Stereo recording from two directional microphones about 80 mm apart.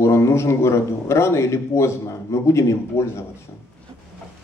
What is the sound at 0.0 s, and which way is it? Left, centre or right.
Speech, left.